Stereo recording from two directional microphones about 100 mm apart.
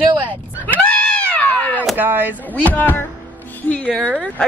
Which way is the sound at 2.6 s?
15° left (ahead or behind).